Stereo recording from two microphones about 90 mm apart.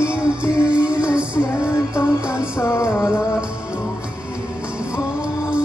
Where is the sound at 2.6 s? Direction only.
35° left (ahead or behind).